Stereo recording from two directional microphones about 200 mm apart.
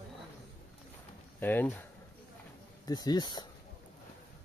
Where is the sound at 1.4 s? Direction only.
10° left (ahead or behind).